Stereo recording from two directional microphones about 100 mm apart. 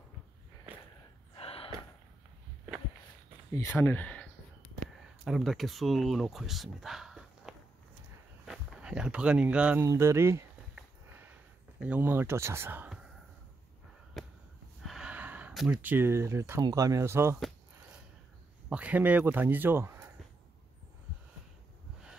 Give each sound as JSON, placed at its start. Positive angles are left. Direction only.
{"t": 1.3, "sound": "gasp", "side_deg": 70}
{"t": 3.5, "sound": "speech", "side_deg": 20}
{"t": 5.2, "sound": "speech", "side_deg": 0}
{"t": 9.8, "sound": "speech", "side_deg": -25}
{"t": 11.8, "sound": "speech", "side_deg": -15}
{"t": 14.9, "sound": "gasp", "side_deg": -10}
{"t": 15.7, "sound": "speech", "side_deg": -20}
{"t": 18.7, "sound": "speech", "side_deg": -15}